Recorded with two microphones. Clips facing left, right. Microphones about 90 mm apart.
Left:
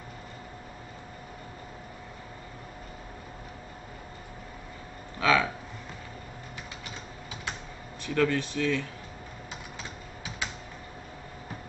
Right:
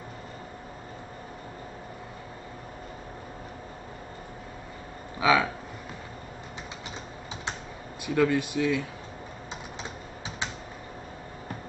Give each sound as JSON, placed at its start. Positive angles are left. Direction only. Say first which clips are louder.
{"t": 5.2, "sound": "speech", "louder": "right 2 dB", "side_deg": -15}
{"t": 8.0, "sound": "speech", "louder": "right 2 dB", "side_deg": -10}